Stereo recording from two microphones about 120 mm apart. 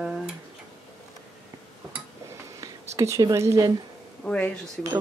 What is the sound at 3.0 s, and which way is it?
Speech, 25° right (ahead or behind).